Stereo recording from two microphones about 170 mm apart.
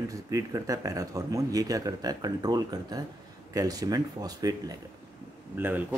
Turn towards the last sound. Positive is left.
turn(degrees=-10)  # may be behind; listen again after turning